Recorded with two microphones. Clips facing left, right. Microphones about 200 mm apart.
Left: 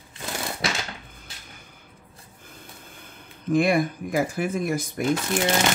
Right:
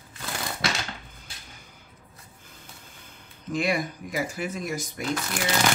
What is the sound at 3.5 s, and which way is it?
Speech, 55° left (ahead or behind).